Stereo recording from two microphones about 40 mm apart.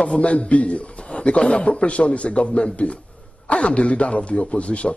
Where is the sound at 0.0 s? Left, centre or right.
Left.